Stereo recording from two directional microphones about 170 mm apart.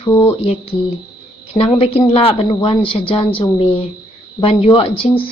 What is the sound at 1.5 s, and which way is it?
Speech, 35° left (ahead or behind).